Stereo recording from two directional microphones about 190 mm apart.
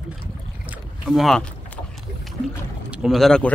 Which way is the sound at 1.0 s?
Centre (ahead or behind).